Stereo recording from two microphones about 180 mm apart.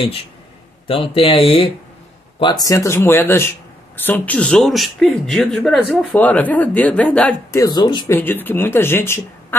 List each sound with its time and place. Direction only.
0.8 s speech: 30° left (ahead or behind); by 7.6 s 10° left (ahead or behind)
7.6 s speech: 25° left (ahead or behind)
8.2 s speech: 10° left (ahead or behind)